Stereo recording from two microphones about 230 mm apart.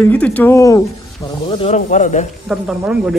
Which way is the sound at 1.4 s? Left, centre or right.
Left.